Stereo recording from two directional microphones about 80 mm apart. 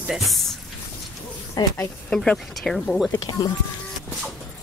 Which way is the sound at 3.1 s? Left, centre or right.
Left.